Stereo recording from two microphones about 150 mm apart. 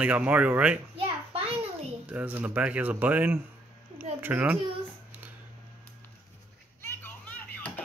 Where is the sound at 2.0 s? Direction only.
10° right (ahead or behind).